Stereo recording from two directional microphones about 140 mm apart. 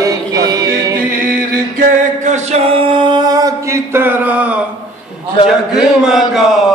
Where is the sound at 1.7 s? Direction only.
65° right (ahead or behind).